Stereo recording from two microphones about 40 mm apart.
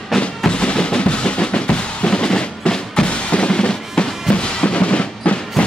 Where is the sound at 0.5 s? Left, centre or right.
Left.